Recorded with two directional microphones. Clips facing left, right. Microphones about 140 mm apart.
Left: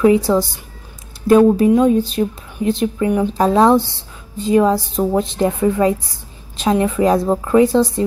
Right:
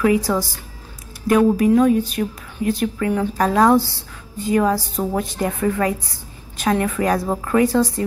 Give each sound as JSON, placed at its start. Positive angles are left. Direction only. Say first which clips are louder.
{"t": 0.0, "sound": "speech", "louder": "left 5 dB", "side_deg": 25}